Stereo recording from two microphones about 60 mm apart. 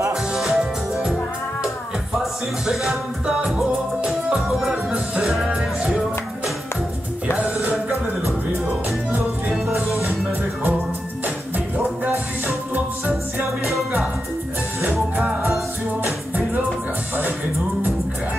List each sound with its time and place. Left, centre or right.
0.1 s music: centre
2.7 s music: centre
4.9 s music: centre
5.3 s music: centre
9.8 s music: right
11.2 s music: right
14.9 s music: centre